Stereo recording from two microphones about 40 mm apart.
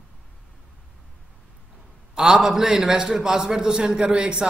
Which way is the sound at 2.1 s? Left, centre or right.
Centre.